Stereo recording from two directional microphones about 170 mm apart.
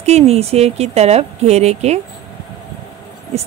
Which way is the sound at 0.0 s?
40° right (ahead or behind).